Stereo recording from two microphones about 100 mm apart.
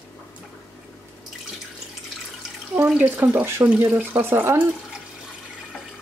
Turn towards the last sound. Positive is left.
turn(degrees=-20)  # may be behind; listen again after turning